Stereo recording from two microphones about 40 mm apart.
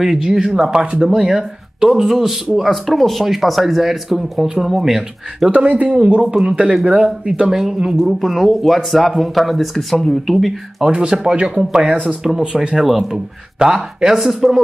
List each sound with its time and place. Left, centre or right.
0.0 s speech: centre
5.5 s speech: right
5.9 s speech: right
6.8 s speech: right
7.5 s speech: centre
10.8 s speech: centre